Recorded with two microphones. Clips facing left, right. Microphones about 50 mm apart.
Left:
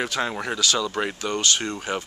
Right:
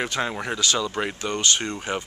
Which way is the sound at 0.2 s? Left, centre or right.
Centre.